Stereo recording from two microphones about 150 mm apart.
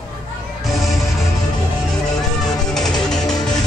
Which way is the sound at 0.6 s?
Centre (ahead or behind).